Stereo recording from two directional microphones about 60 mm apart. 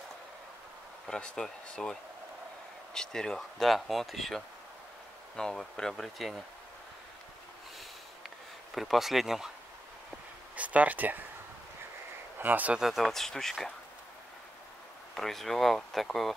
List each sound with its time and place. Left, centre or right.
1.0 s speech: centre
5.3 s speech: centre
8.7 s speech: centre
10.5 s speech: right
12.4 s speech: right
12.7 s speech: centre
15.1 s speech: centre